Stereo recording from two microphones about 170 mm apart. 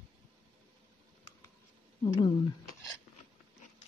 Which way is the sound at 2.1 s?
30° left (ahead or behind).